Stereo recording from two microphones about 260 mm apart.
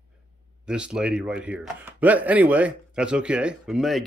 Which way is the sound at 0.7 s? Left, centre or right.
Centre.